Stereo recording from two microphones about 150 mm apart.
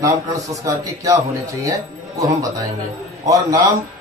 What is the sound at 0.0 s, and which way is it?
A man's voice, 20° right (ahead or behind).